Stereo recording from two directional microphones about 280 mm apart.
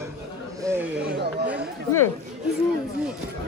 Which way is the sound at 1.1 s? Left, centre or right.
Right.